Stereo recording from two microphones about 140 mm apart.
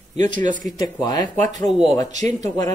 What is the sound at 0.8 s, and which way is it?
Speech, 30° left (ahead or behind).